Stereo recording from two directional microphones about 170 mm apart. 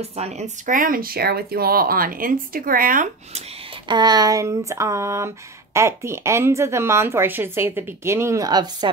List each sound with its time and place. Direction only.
0.0 s speech: 35° right (ahead or behind); by 3.1 s 55° right (ahead or behind)
3.8 s speech: 25° right (ahead or behind)